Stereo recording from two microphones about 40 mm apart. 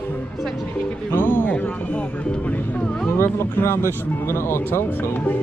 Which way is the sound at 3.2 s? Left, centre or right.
Left.